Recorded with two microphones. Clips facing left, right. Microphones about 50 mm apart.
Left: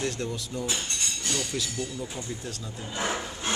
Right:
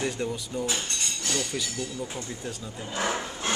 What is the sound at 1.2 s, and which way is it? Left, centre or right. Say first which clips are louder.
Chink: right 2 dB; right.